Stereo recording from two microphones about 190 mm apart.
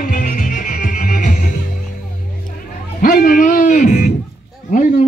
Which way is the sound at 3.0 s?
45° left (ahead or behind).